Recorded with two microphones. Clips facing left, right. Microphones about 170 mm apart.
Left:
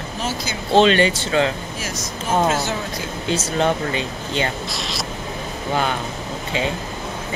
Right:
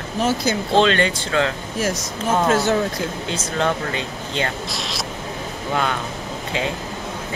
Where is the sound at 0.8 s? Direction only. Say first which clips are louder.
Left 4 dB; 5° left (ahead or behind).